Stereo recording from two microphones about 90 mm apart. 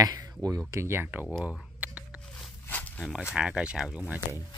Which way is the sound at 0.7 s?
30° right (ahead or behind).